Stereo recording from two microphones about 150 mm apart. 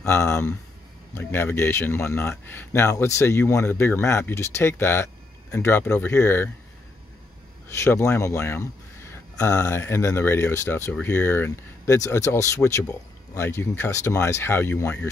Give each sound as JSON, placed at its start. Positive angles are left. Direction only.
{"t": 0.0, "sound": "speech", "side_deg": 20}
{"t": 7.6, "sound": "speech", "side_deg": 15}